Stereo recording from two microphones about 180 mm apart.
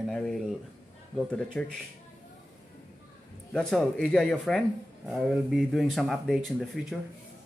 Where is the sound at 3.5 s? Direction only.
Centre (ahead or behind).